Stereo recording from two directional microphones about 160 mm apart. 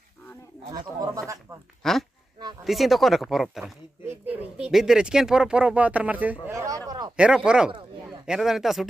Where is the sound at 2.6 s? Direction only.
Centre (ahead or behind).